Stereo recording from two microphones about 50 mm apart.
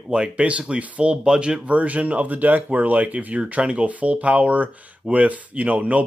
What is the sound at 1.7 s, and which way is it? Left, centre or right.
Speech, right.